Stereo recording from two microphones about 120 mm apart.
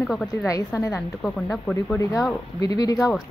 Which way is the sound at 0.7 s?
25° left (ahead or behind).